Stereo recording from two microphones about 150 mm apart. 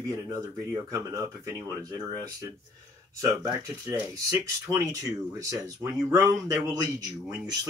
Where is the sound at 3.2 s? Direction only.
20° right (ahead or behind).